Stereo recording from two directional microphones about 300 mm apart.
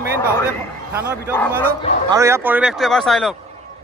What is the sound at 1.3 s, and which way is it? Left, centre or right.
Speech, centre.